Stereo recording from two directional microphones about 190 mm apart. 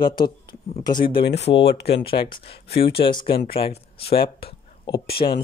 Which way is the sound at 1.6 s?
60° left (ahead or behind).